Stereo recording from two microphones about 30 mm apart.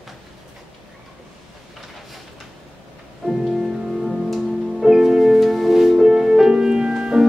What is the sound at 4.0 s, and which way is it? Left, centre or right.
Music, centre.